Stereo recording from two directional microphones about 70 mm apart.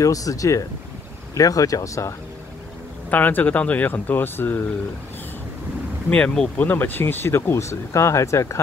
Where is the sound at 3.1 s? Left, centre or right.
Left.